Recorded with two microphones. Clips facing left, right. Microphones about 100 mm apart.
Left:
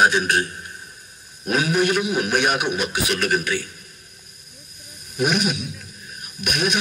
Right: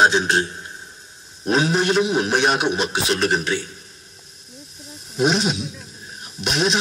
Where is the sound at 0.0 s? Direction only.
25° right (ahead or behind).